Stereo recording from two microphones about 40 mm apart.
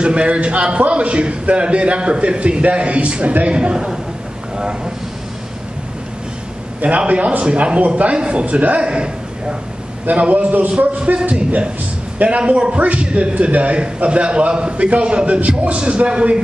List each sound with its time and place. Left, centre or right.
0.0 s a man's voice: right
4.6 s speech: centre
7.1 s a man's voice: right
11.2 s a man's voice: right